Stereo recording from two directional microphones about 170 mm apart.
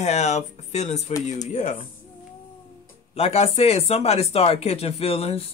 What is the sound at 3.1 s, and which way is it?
Speech, 40° left (ahead or behind).